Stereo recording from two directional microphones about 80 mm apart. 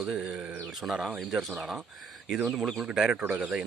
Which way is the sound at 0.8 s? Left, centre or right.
Centre.